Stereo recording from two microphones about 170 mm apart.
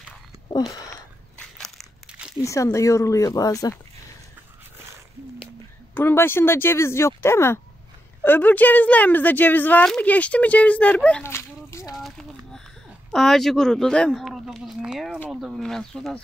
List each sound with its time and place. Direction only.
1.4 s crumpling: centre (ahead or behind)
2.4 s speech: 20° left (ahead or behind)
5.9 s speech: 10° left (ahead or behind)
12.0 s a sound: centre (ahead or behind)
13.1 s speech: centre (ahead or behind)